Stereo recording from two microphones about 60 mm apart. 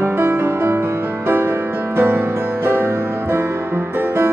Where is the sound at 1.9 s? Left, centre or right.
Right.